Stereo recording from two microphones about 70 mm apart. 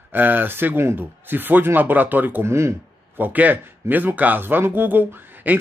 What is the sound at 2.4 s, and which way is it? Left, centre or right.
Speech, right.